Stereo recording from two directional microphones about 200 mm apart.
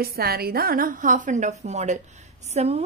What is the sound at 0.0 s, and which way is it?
A woman's voice, 50° right (ahead or behind).